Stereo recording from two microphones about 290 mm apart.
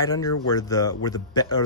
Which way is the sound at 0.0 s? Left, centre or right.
Centre.